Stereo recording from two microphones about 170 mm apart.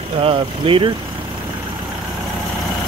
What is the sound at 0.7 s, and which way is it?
Speech, 35° right (ahead or behind).